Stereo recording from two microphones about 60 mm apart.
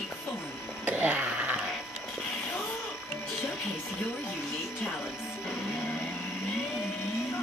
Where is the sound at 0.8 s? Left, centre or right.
Right.